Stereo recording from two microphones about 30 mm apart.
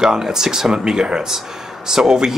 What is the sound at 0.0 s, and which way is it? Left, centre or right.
Speech, centre.